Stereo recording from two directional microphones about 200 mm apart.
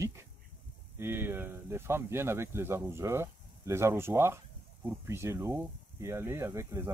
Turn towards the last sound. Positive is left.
turn(degrees=-15)  # may be behind; listen again after turning